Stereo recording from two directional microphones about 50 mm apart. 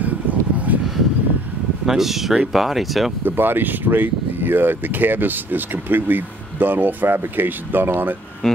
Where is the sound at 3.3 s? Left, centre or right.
Right.